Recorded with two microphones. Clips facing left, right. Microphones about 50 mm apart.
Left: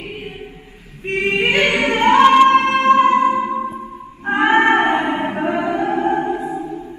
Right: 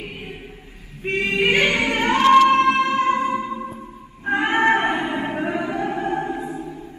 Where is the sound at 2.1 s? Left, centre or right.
Left.